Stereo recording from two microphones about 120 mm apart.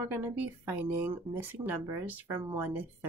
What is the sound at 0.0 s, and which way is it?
Speech, 15° right (ahead or behind).